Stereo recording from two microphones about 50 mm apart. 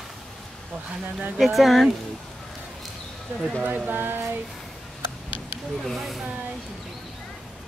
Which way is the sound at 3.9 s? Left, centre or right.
Right.